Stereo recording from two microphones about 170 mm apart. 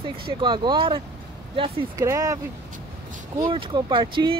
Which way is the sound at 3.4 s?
30° right (ahead or behind).